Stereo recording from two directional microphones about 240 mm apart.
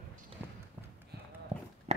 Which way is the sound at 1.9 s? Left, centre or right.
Right.